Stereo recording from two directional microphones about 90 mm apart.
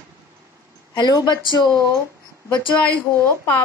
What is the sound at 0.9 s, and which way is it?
Speech, 55° left (ahead or behind).